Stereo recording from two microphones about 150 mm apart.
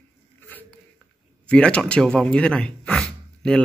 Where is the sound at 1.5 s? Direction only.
5° left (ahead or behind).